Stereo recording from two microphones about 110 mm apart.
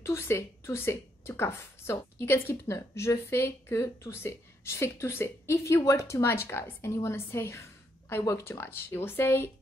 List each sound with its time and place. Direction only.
0.0 s speech: 25° left (ahead or behind)